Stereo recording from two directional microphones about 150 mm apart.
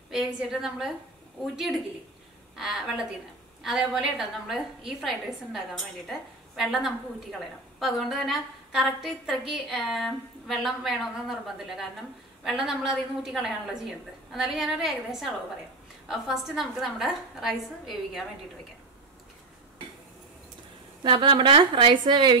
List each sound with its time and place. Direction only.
0.1 s a woman's voice: 5° right (ahead or behind)
21.0 s speech: 35° right (ahead or behind)